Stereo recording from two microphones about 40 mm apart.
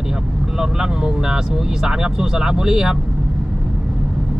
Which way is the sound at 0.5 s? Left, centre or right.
Centre.